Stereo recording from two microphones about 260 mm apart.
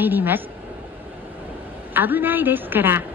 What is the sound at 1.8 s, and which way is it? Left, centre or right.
A woman's voice, centre.